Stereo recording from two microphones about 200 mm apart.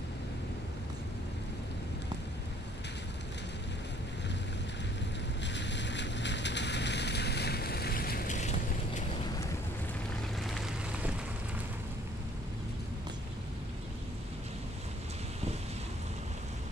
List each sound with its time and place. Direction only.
5.4 s boat: 60° left (ahead or behind); by 9.0 s 35° left (ahead or behind)
10.4 s boat: centre (ahead or behind)